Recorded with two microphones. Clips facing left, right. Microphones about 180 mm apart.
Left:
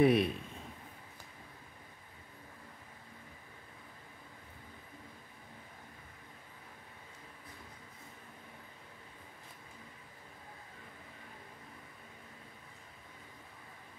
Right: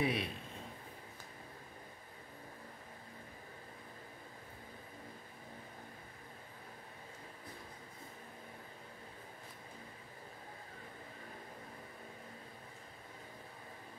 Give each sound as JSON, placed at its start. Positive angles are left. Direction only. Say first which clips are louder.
{"t": 0.0, "sound": "a man's voice", "louder": "left 9 dB", "side_deg": 55}